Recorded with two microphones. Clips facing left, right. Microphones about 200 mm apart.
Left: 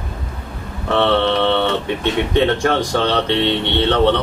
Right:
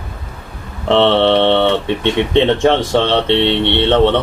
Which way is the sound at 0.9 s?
25° right (ahead or behind).